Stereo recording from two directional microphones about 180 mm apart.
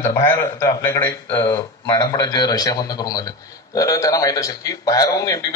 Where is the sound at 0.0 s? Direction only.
15° left (ahead or behind).